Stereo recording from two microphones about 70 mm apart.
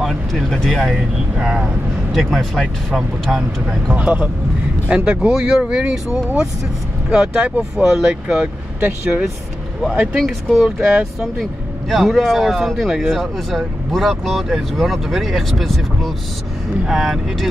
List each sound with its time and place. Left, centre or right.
0.0 s speech: centre
1.4 s speech: centre
2.1 s speech: centre
3.9 s speech: centre
7.1 s speech: centre
8.7 s speech: right
9.9 s speech: centre
11.9 s speech: centre